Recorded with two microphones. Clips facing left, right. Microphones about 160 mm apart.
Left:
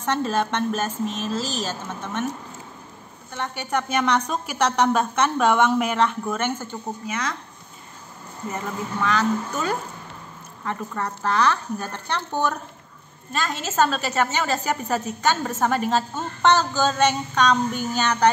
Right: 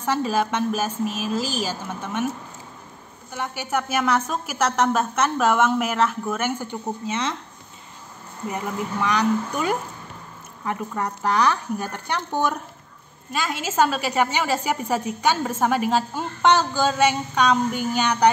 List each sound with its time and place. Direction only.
0.0 s a woman's voice: 10° right (ahead or behind)
3.3 s a woman's voice: 10° right (ahead or behind)
7.1 s speech: 25° right (ahead or behind)
8.5 s a woman's voice: 15° right (ahead or behind)